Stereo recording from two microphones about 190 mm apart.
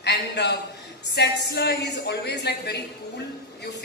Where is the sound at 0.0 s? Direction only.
60° left (ahead or behind).